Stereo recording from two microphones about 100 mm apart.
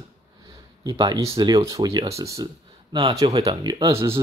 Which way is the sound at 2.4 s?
50° right (ahead or behind).